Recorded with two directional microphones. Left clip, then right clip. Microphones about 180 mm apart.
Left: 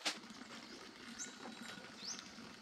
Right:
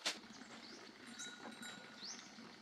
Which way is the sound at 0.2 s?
85° left.